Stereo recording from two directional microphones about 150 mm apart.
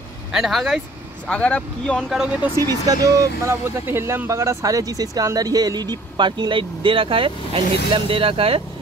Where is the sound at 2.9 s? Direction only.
20° right (ahead or behind).